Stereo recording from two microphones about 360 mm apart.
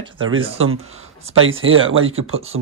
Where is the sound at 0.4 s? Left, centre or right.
Centre.